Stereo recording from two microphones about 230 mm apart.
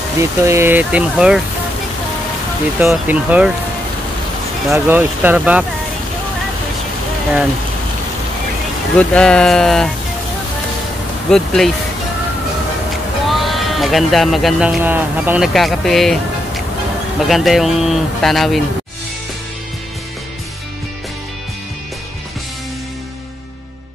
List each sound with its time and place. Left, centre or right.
0.2 s speech: centre
2.8 s speech: centre
4.6 s speech: centre
8.9 s speech: centre
11.2 s speech: centre
13.3 s speech: centre
17.3 s speech: centre